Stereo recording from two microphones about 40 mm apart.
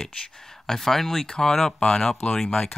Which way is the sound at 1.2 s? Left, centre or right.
Left.